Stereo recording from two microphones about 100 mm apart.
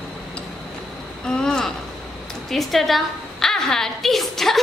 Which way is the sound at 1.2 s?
5° left (ahead or behind).